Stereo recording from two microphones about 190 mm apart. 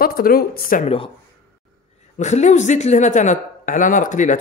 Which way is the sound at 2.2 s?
40° left (ahead or behind).